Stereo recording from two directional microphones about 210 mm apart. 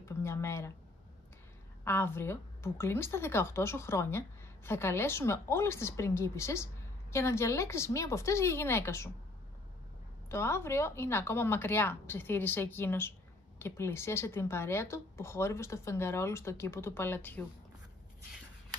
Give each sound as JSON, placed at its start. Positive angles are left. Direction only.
{"t": 0.0, "sound": "a sound", "side_deg": 15}
{"t": 1.9, "sound": "a woman's voice", "side_deg": 10}
{"t": 10.3, "sound": "a woman's voice", "side_deg": 10}